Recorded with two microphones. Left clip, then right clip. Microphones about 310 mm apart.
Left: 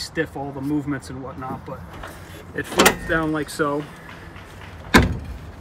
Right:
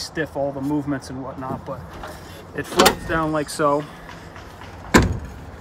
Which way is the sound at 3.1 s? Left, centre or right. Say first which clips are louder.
Even; centre.